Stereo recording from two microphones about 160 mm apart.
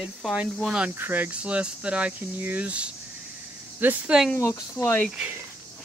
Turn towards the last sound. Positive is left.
turn(degrees=15)  # may be behind; listen again after turning